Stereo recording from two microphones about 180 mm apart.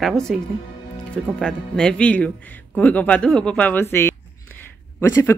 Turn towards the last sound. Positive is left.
turn(degrees=15)  # may be behind; listen again after turning